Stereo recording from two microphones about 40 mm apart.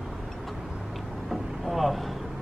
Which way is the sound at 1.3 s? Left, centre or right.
Centre.